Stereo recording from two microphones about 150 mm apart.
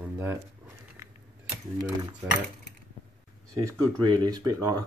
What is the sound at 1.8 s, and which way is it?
Speech, 25° right (ahead or behind).